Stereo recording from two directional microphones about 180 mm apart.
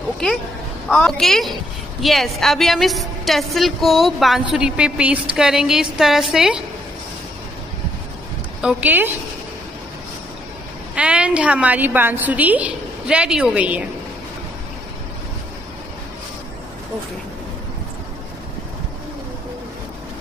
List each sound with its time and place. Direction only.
0.8 s a woman's voice: 5° left (ahead or behind)
8.5 s a woman's voice: 5° right (ahead or behind)
11.0 s a woman's voice: 5° right (ahead or behind)